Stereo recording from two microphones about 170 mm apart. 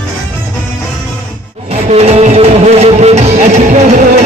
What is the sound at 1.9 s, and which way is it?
Music, 40° right (ahead or behind).